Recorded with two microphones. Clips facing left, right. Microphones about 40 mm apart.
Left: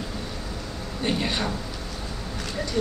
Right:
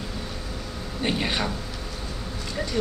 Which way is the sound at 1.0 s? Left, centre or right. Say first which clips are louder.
Even; centre.